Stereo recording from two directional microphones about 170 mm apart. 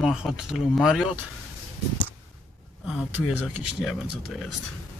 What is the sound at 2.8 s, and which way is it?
Speech, centre (ahead or behind).